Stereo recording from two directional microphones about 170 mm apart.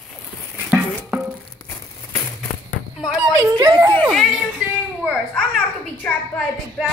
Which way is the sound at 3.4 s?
15° right (ahead or behind).